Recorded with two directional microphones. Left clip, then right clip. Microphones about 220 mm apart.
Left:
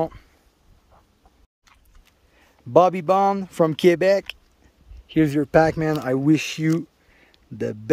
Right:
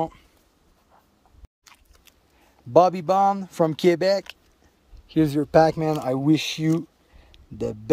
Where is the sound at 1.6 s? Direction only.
45° right (ahead or behind).